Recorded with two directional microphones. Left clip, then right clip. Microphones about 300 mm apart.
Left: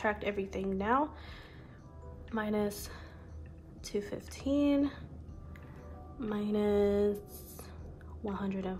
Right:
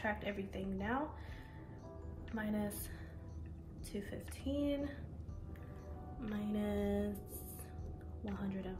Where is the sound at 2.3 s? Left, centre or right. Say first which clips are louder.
Left 8 dB; centre.